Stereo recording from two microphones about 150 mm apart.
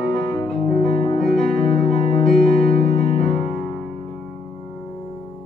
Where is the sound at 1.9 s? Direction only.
40° left (ahead or behind).